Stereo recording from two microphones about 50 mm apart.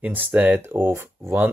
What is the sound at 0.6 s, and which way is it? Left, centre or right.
Speech, right.